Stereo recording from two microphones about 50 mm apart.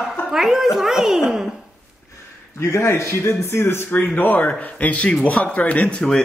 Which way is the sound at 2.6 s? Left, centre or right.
Left.